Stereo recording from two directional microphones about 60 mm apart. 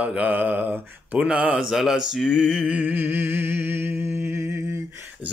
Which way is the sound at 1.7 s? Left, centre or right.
Centre.